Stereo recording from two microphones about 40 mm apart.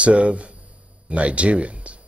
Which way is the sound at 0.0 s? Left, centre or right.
Right.